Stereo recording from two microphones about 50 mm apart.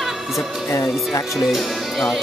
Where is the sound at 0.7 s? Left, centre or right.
Left.